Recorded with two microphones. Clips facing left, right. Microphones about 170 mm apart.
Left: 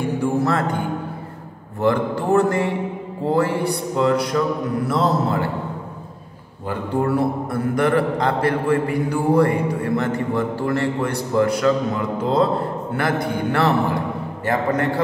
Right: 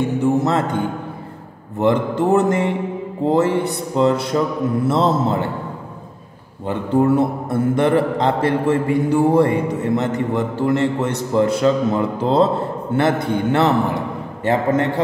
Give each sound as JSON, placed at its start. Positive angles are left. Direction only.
{"t": 0.0, "sound": "music", "side_deg": -20}
{"t": 1.8, "sound": "a man's voice", "side_deg": -20}
{"t": 6.7, "sound": "a man's voice", "side_deg": -20}